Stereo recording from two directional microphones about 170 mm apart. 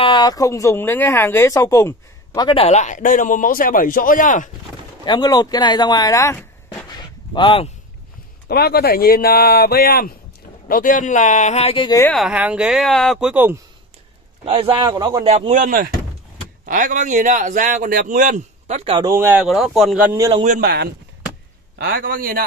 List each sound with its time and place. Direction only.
0.0 s speech: 25° left (ahead or behind)
2.4 s a man's voice: 35° left (ahead or behind)
5.0 s speech: 25° left (ahead or behind)
8.5 s speech: 65° left (ahead or behind)
10.7 s a man's voice: 55° left (ahead or behind); by 12.0 s 30° left (ahead or behind)
12.1 s speech: 5° right (ahead or behind)
14.4 s a man's voice: 35° right (ahead or behind)
15.2 s a man's voice: 40° right (ahead or behind)
18.9 s a man's voice: 30° right (ahead or behind)
19.1 s speech: 15° right (ahead or behind)
19.4 s speech: centre (ahead or behind)
20.6 s speech: 75° right (ahead or behind)
21.7 s a man's voice: 65° right (ahead or behind)